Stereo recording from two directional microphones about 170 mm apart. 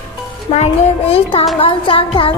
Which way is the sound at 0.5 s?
35° left (ahead or behind).